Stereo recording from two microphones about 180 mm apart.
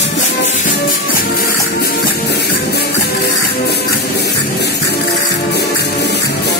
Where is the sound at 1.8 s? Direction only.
65° left (ahead or behind).